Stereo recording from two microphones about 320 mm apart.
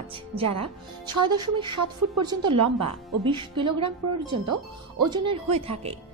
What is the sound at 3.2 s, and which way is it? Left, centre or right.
A woman's voice, centre.